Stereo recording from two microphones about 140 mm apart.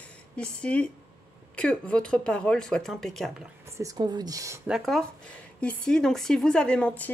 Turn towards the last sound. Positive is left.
turn(degrees=10)  # may be behind; listen again after turning